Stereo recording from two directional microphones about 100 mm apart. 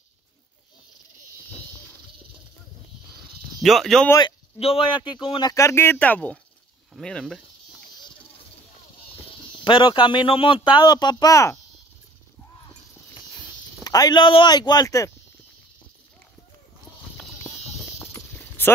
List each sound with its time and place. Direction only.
3.6 s speech: centre (ahead or behind)
4.6 s speech: 75° left (ahead or behind); by 5.5 s 50° left (ahead or behind)
5.5 s speech: 30° left (ahead or behind)
5.9 s speech: 15° left (ahead or behind)
9.7 s speech: 55° left (ahead or behind); by 11.5 s 35° left (ahead or behind)
13.8 s speech: 40° left (ahead or behind)
17.4 s clip-clop: 25° left (ahead or behind)